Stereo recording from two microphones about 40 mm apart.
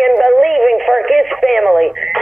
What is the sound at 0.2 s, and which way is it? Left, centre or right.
Radio, centre.